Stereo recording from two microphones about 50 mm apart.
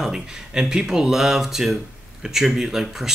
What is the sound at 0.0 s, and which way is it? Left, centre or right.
Speech, centre.